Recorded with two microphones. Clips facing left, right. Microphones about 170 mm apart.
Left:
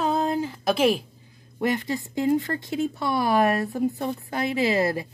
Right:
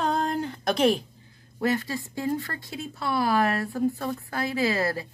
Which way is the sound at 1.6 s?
20° left (ahead or behind).